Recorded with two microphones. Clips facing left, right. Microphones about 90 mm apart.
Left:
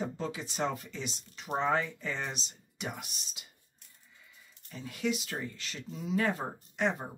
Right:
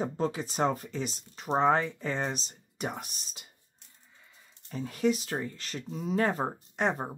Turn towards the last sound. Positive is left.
turn(degrees=-35)  # may be behind; listen again after turning